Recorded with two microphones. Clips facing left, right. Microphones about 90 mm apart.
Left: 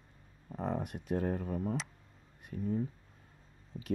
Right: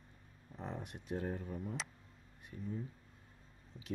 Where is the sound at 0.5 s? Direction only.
55° left (ahead or behind).